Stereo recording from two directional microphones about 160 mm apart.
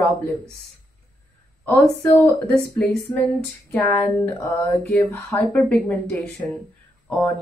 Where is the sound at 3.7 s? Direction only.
10° left (ahead or behind).